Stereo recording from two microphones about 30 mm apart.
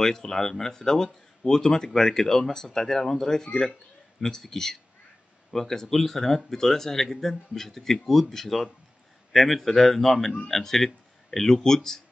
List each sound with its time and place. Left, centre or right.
0.0 s speech: centre